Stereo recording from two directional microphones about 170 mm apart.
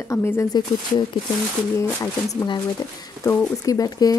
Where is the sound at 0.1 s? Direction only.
15° left (ahead or behind).